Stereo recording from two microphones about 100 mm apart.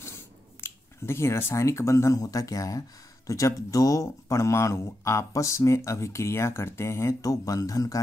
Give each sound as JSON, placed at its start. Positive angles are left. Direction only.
{"t": 0.6, "sound": "speech", "side_deg": 25}